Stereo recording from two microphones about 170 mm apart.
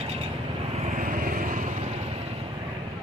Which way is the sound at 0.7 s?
45° right (ahead or behind).